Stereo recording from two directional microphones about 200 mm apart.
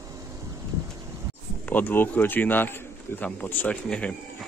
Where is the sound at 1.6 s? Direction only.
10° left (ahead or behind).